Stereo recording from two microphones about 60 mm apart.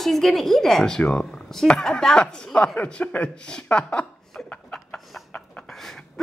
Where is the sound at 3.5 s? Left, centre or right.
Centre.